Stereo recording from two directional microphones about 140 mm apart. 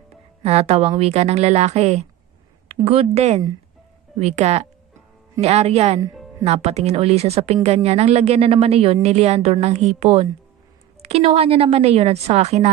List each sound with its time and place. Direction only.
0.4 s a woman's voice: 45° right (ahead or behind)